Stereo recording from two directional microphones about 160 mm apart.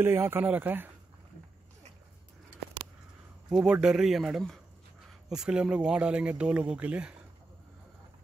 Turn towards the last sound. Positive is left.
turn(degrees=-10)  # may be behind; listen again after turning